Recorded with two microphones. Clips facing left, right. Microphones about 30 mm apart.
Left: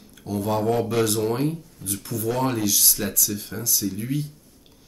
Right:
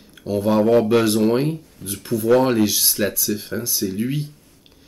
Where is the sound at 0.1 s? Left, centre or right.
Right.